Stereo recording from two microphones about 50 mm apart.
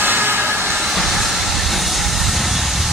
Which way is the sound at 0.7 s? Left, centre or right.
Centre.